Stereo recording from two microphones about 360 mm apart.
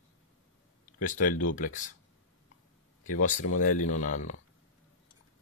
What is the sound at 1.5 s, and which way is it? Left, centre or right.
Speech, left.